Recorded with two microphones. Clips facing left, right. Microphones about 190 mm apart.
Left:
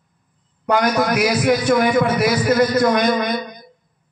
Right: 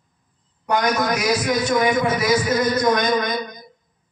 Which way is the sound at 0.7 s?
60° left (ahead or behind).